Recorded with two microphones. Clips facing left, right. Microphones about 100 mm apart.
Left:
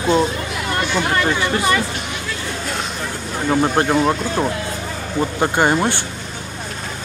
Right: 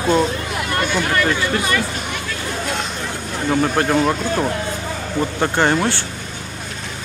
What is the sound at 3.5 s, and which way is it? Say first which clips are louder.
Speech: left 1 dB; 20° left (ahead or behind).